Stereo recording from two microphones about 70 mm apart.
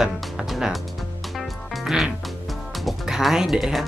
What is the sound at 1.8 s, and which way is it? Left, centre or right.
Music, centre.